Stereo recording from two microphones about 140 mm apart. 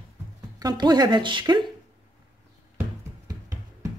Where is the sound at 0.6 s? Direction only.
30° right (ahead or behind).